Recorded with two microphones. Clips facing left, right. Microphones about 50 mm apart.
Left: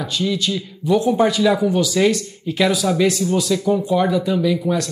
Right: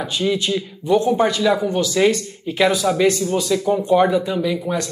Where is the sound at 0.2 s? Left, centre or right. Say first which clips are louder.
Right 2 dB; right.